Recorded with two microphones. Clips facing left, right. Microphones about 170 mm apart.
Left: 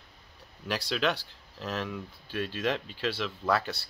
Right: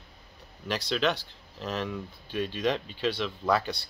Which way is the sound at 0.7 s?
5° left (ahead or behind).